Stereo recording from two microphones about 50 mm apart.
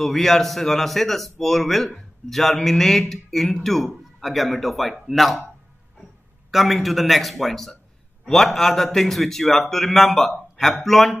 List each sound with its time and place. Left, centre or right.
0.0 s a man's voice: centre
6.5 s a man's voice: centre